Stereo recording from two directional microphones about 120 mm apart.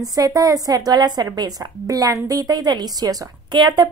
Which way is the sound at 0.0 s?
30° right (ahead or behind).